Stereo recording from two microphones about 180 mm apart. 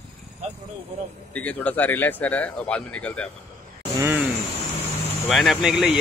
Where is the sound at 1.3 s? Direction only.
5° left (ahead or behind).